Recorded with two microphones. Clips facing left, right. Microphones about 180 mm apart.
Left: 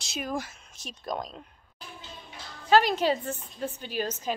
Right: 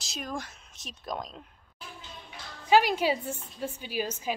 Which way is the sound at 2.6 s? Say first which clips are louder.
Left 1 dB; 10° right (ahead or behind).